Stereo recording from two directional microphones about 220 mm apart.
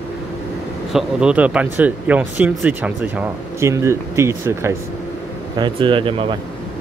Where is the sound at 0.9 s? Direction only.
5° right (ahead or behind); by 6.3 s 25° right (ahead or behind).